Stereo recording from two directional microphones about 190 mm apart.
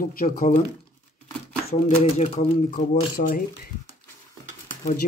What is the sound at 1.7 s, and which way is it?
Speech, 35° left (ahead or behind).